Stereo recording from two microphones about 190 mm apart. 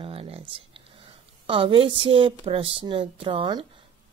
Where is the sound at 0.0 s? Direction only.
30° right (ahead or behind).